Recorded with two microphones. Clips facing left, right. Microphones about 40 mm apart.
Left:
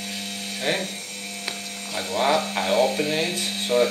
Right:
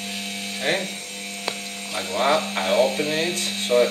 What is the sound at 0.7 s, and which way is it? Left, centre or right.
Speech, right.